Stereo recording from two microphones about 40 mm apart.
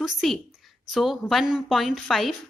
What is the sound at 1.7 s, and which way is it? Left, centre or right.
Speech, centre.